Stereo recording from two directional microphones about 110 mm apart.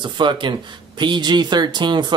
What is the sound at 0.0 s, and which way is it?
Speech, 45° right (ahead or behind).